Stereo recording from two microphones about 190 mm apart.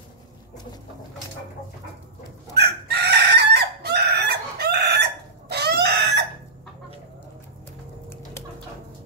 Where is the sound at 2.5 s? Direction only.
55° right (ahead or behind).